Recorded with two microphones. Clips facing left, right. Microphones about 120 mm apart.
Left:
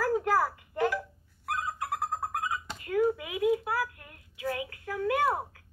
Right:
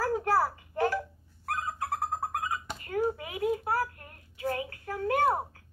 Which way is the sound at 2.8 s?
30° right (ahead or behind).